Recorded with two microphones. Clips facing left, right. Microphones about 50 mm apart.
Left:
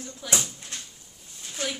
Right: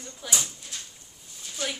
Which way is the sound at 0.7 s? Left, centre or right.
Left.